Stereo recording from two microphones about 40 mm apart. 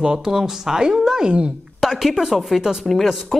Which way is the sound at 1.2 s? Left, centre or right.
Right.